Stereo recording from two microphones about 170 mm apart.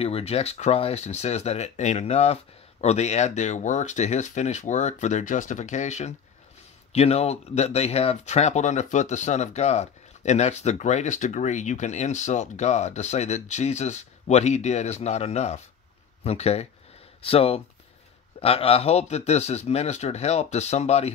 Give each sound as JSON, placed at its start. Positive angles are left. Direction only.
{"t": 0.0, "sound": "speech", "side_deg": 35}